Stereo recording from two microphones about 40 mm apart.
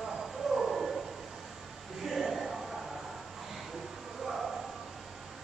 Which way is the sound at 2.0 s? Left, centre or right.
Centre.